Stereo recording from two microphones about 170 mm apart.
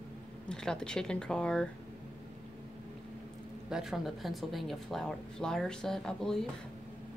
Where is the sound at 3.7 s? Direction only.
Centre (ahead or behind).